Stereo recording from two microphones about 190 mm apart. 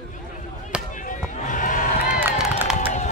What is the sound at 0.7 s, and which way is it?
Basketball bounce, 5° right (ahead or behind).